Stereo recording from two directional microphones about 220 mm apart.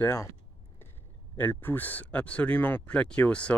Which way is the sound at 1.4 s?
10° left (ahead or behind).